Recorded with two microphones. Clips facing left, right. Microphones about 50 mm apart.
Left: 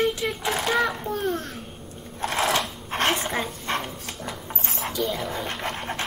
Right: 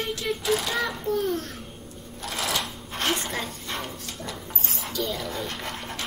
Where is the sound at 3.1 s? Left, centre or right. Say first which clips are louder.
Left 3 dB; centre.